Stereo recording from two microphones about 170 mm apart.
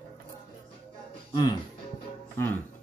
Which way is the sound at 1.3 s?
25° left (ahead or behind).